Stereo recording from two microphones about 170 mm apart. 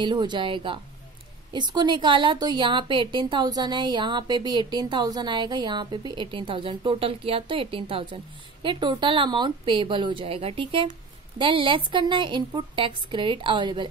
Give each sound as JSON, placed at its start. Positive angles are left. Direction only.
{"t": 0.0, "sound": "a woman's voice", "side_deg": -25}